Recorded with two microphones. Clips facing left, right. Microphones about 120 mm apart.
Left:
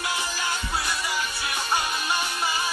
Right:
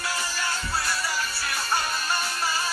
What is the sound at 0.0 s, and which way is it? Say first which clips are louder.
Music: left 1 dB; 20° left (ahead or behind).